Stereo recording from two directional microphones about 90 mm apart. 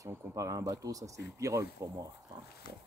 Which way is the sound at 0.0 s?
35° right (ahead or behind).